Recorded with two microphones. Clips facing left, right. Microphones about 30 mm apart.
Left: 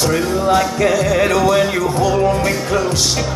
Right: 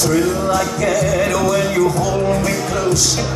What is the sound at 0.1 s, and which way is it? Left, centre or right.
Music, left.